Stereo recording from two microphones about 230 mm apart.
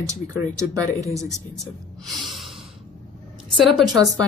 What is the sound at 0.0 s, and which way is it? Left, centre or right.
Speech, centre.